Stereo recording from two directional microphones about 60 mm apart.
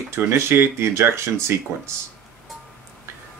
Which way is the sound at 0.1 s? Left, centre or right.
Right.